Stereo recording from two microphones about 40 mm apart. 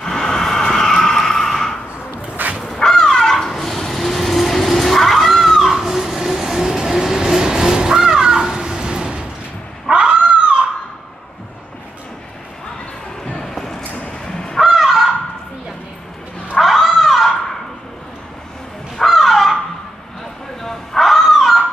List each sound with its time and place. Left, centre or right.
0.0 s vehicle: centre
7.3 s a sound: centre
9.9 s cat: right
13.2 s a sound: centre
14.2 s honk: centre
14.6 s honk: centre
16.5 s cat: centre
19.0 s crow: centre
20.6 s a sound: centre